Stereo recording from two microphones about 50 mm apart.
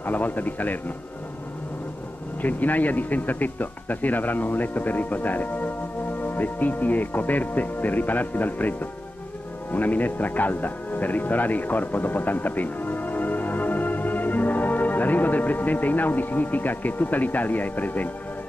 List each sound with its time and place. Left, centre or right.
0.0 s speech: left
2.4 s speech: left